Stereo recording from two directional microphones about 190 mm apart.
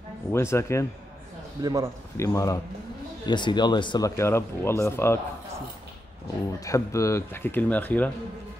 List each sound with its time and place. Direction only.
0.3 s speech: 15° left (ahead or behind)
1.6 s a man's voice: 20° right (ahead or behind)
2.1 s speech: 15° left (ahead or behind)
6.6 s speech: 15° left (ahead or behind)